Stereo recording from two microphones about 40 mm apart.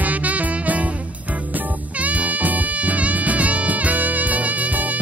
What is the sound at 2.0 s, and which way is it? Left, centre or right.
Music, right.